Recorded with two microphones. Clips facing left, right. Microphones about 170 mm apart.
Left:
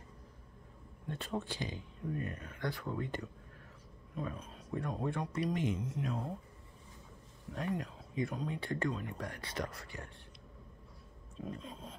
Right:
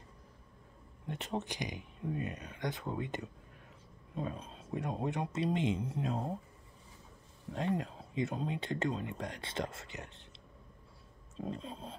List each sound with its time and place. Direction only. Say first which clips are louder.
1.0 s speech: right 1 dB; 20° right (ahead or behind)
7.5 s speech: right 3 dB; 25° right (ahead or behind)
11.3 s speech: right 3 dB; 30° right (ahead or behind)